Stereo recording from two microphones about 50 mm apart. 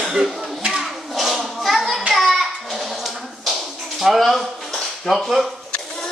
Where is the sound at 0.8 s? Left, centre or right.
Centre.